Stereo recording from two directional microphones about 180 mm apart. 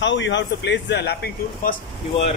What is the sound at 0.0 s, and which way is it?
Speech, 90° left.